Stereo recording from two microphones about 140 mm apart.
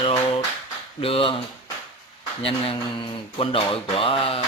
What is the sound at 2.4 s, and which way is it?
Speech, 40° left (ahead or behind).